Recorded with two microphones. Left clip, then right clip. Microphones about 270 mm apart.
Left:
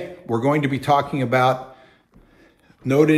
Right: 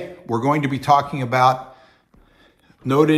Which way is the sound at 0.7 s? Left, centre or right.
Right.